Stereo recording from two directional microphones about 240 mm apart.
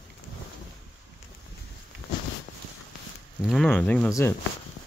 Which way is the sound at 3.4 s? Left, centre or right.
Centre.